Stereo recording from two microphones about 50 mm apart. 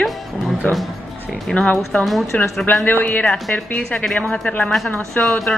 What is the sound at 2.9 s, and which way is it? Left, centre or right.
Speech, left.